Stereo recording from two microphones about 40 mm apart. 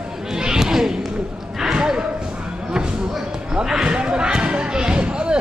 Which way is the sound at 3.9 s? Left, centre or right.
Right.